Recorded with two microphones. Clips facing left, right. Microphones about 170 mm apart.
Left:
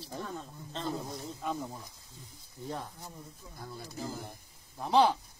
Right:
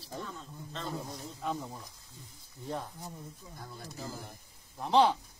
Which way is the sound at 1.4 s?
5° left (ahead or behind).